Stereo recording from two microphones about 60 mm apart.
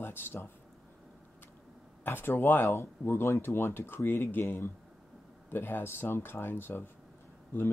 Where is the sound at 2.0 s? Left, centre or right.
Left.